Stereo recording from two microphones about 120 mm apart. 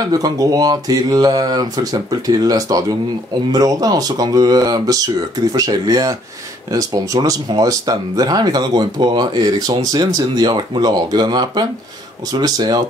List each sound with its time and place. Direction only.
0.0 s speech: 30° right (ahead or behind)